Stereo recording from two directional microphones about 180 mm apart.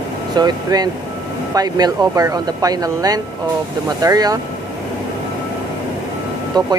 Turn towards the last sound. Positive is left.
turn(degrees=-20)  # may be behind; listen again after turning